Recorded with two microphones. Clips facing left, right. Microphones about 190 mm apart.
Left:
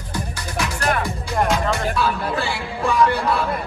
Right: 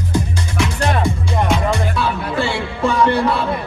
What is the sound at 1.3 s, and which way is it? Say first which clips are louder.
Music: even; centre (ahead or behind).